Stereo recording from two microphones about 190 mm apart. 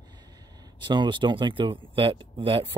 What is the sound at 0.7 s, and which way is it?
Speech, 25° right (ahead or behind).